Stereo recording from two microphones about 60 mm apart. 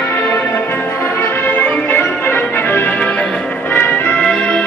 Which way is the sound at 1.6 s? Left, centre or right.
Left.